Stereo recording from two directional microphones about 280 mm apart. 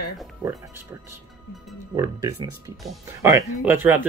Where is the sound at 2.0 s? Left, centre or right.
Centre.